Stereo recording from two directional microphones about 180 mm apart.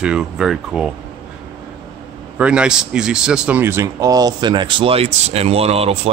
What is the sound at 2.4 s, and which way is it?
Speech, 5° right (ahead or behind).